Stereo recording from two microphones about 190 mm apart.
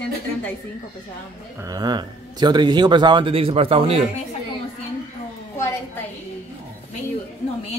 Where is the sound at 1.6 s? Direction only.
20° right (ahead or behind).